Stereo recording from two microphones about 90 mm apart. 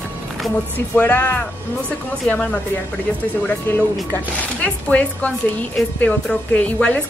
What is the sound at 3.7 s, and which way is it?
A woman's voice, 25° left (ahead or behind).